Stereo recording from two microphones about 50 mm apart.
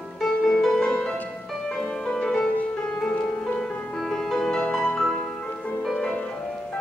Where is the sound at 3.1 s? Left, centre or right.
Left.